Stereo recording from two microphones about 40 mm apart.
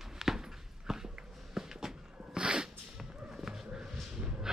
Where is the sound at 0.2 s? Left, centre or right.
Centre.